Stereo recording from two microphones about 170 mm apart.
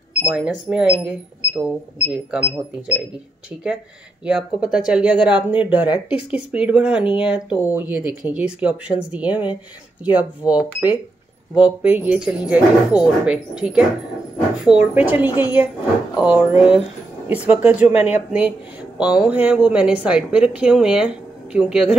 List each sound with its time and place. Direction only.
0.2 s speech: 5° right (ahead or behind)
15.2 s a woman's voice: 25° left (ahead or behind)
16.2 s speech: 10° right (ahead or behind)